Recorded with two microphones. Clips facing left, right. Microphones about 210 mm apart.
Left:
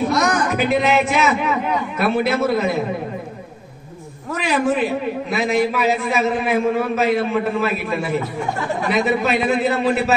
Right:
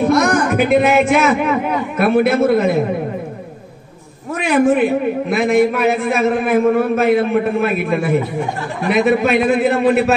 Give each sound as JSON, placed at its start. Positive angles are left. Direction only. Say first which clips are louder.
{"t": 0.1, "sound": "a man's voice", "louder": "right 5 dB", "side_deg": -55}
{"t": 4.4, "sound": "a man's voice", "louder": "right 6 dB", "side_deg": -55}